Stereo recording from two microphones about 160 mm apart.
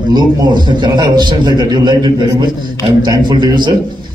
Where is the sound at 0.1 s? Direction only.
25° right (ahead or behind).